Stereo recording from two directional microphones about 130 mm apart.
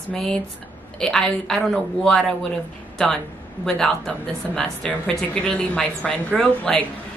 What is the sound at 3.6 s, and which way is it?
A woman's voice, 5° left (ahead or behind).